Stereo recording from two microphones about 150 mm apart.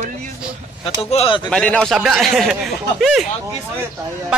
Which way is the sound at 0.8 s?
40° left (ahead or behind).